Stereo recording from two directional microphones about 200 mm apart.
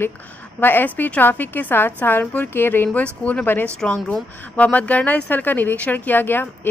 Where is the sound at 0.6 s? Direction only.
10° left (ahead or behind).